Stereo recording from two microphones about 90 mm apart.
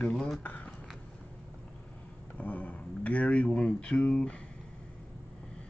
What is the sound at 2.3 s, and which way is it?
Speech, 15° left (ahead or behind).